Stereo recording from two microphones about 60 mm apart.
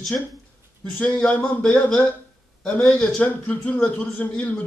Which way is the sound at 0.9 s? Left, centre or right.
Left.